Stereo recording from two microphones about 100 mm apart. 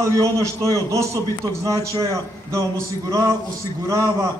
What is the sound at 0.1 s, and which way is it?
A man's voice, 30° right (ahead or behind).